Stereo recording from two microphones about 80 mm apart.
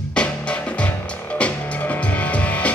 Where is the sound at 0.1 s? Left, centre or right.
Centre.